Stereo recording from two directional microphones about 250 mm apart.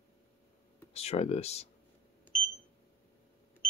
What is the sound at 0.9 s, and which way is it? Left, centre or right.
Speech, left.